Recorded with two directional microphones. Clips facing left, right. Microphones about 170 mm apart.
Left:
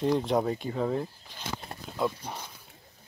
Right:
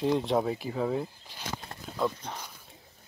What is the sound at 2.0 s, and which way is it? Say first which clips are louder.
Speech: even; 5° left (ahead or behind).